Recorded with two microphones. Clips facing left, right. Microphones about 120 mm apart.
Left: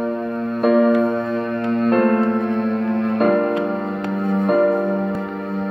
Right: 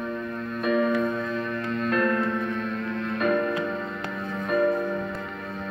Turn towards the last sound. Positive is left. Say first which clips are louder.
# left 7 dB
turn(degrees=45)  # may be behind; listen again after turning